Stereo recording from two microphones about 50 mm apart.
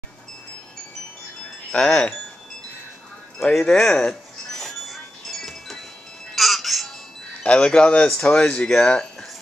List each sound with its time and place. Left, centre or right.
1.8 s speech: centre
3.3 s speech: centre
4.1 s music: centre
7.4 s speech: left